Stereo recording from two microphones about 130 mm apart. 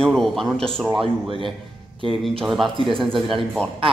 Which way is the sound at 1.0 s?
45° right (ahead or behind).